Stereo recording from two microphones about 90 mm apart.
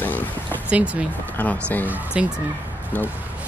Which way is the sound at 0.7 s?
15° right (ahead or behind).